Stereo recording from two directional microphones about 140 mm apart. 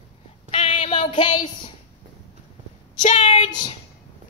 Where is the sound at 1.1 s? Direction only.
35° left (ahead or behind).